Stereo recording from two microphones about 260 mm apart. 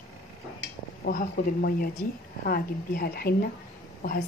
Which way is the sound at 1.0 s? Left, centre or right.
Left.